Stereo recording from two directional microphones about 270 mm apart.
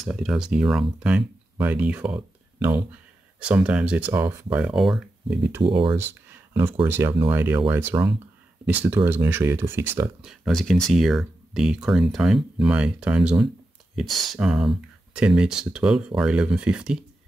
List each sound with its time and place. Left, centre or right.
0.0 s speech: centre
5.6 s speech: centre
5.9 s speech: centre